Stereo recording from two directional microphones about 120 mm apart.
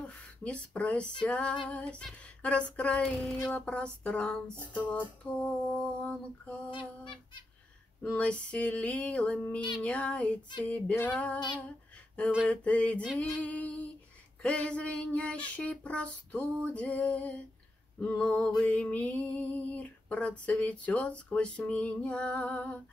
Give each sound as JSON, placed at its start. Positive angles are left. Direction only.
{"t": 0.0, "sound": "speech", "side_deg": 10}
{"t": 1.2, "sound": "music", "side_deg": 10}
{"t": 6.7, "sound": "fowl", "side_deg": 45}
{"t": 8.0, "sound": "music", "side_deg": 10}
{"t": 11.3, "sound": "female singing", "side_deg": 40}
{"t": 12.4, "sound": "music", "side_deg": 10}